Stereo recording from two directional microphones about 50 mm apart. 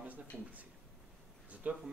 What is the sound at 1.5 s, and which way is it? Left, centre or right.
Speech, right.